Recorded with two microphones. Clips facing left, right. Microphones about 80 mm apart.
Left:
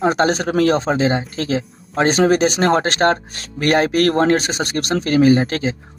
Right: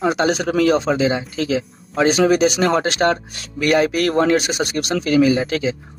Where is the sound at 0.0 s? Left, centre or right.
Left.